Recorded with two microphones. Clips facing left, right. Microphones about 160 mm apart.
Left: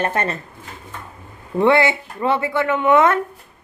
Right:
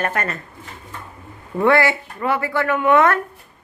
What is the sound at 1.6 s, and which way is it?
Speech, 20° left (ahead or behind).